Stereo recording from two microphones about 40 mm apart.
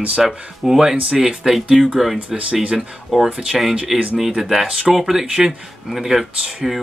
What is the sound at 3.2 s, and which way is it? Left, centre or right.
Speech, centre.